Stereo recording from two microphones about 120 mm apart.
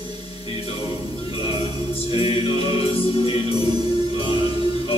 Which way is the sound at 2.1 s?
50° left (ahead or behind).